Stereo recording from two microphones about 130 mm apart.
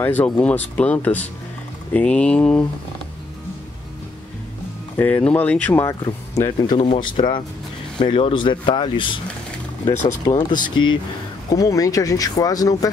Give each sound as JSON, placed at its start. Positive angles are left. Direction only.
{"t": 0.0, "sound": "speech", "side_deg": 10}
{"t": 4.9, "sound": "speech", "side_deg": 10}
{"t": 5.9, "sound": "speech", "side_deg": 25}
{"t": 6.8, "sound": "speech", "side_deg": 40}
{"t": 10.3, "sound": "speech", "side_deg": 35}
{"t": 11.5, "sound": "speech", "side_deg": 25}